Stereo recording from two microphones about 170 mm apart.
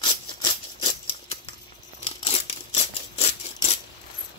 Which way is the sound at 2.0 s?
35° left (ahead or behind).